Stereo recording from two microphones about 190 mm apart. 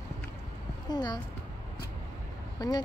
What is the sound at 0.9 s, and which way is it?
Speech, 20° left (ahead or behind).